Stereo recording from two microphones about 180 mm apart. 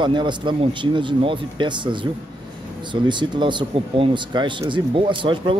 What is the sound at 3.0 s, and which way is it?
Speech, 25° right (ahead or behind).